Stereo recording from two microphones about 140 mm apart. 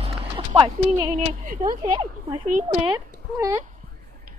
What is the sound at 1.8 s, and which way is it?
Speech, 45° right (ahead or behind).